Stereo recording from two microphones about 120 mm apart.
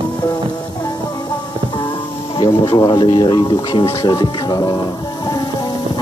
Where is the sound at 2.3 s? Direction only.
40° left (ahead or behind).